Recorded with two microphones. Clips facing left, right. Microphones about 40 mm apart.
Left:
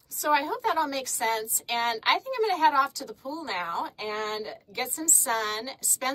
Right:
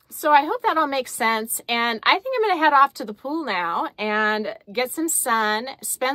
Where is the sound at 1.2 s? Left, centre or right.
Right.